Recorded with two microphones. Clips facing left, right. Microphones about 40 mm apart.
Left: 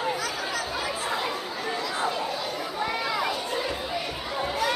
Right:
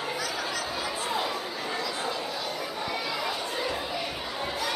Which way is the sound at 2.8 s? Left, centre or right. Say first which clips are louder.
Left 4 dB; left.